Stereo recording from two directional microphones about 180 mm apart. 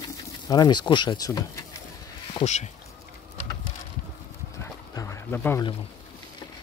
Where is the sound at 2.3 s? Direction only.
35° left (ahead or behind).